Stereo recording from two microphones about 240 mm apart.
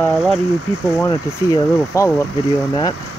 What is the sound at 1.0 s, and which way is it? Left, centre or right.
Speech, centre.